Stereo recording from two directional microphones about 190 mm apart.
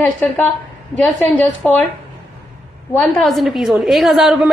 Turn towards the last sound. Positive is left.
turn(degrees=0)  # may be behind; listen again after turning